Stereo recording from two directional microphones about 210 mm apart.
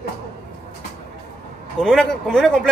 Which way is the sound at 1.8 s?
Centre (ahead or behind).